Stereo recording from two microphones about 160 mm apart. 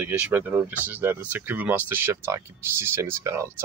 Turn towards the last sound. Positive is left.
turn(degrees=-20)  # may be behind; listen again after turning